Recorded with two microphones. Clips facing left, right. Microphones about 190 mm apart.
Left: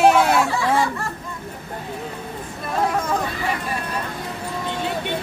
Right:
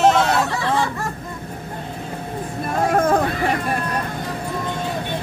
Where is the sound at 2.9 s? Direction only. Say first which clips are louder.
Right 10 dB; 55° right (ahead or behind).